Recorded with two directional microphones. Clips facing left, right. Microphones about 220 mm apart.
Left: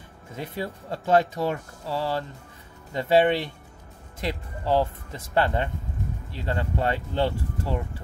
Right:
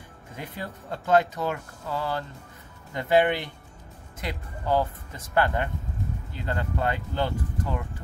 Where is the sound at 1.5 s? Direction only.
30° left (ahead or behind).